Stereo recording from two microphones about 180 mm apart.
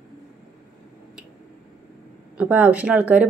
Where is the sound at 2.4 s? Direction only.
10° right (ahead or behind).